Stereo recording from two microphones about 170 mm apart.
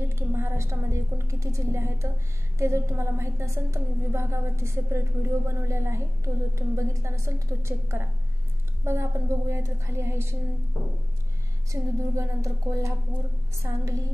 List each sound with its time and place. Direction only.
0.1 s a woman's voice: 15° right (ahead or behind)
11.7 s a woman's voice: 20° right (ahead or behind)
13.6 s a sound: 20° right (ahead or behind)